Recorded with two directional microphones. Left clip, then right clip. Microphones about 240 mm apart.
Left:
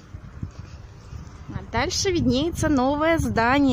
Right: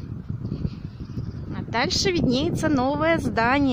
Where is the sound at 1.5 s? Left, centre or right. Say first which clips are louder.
Right 1 dB; centre.